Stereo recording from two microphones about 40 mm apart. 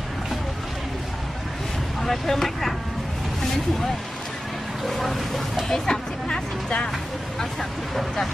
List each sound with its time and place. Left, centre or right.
2.0 s speech: centre
4.8 s speech: centre
5.7 s speech: centre
7.9 s speech: centre